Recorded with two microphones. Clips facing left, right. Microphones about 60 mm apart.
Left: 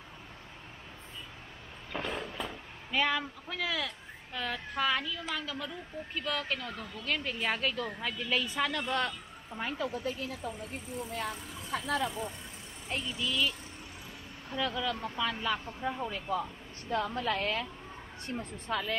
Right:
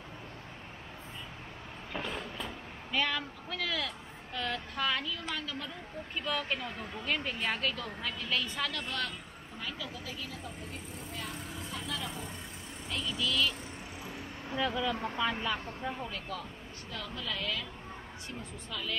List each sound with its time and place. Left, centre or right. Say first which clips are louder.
1.9 s a woman's voice: left 2 dB; centre; by 9.1 s left
9.6 s speech: left 7 dB; left
12.9 s a woman's voice: right 1 dB; left
14.5 s speech: right 1 dB; centre
15.4 s speech: left 2 dB; centre
16.0 s a woman's voice: left 6 dB; centre
16.9 s a woman's voice: left 8 dB; left